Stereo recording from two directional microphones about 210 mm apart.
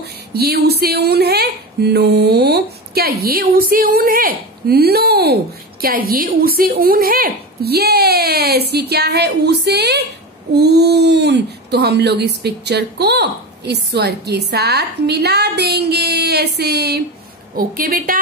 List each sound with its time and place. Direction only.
0.0 s speech: 50° right (ahead or behind)